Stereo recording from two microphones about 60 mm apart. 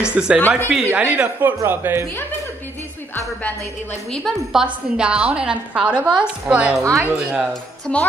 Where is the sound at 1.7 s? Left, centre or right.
Right.